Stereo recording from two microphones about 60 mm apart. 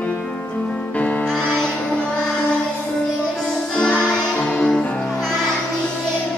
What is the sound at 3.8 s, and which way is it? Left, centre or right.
Music, centre.